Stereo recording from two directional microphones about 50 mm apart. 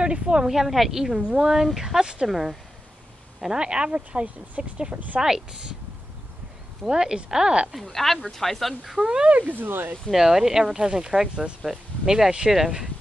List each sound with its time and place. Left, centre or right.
0.0 s speech: centre
0.5 s a woman's voice: centre; by 5.2 s right
5.2 s speech: centre
6.9 s speech: centre
7.8 s a woman's voice: centre
9.0 s speech: right
9.5 s speech: right
10.1 s speech: centre